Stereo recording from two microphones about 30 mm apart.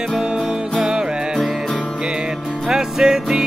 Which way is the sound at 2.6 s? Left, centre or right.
Right.